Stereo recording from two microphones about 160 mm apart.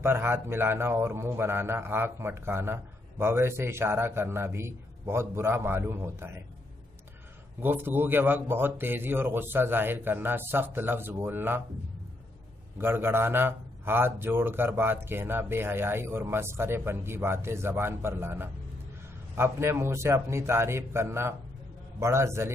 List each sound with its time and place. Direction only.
0.0 s a man's voice: 15° right (ahead or behind)
7.6 s a man's voice: 15° right (ahead or behind)
12.7 s a man's voice: 15° right (ahead or behind)